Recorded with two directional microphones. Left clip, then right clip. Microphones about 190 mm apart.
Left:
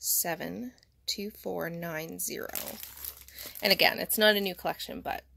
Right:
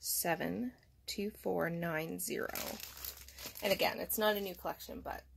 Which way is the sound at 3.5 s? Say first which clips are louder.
Left 9 dB; 35° left (ahead or behind).